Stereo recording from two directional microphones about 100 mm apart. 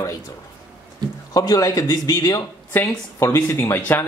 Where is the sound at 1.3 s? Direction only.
40° left (ahead or behind); by 4.1 s 20° left (ahead or behind).